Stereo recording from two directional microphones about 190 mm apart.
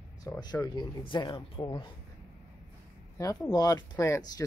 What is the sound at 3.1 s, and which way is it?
Speech, 15° left (ahead or behind).